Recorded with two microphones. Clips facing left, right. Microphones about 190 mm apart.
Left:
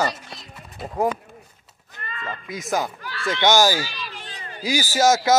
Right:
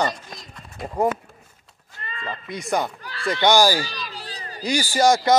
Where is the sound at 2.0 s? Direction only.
30° right (ahead or behind).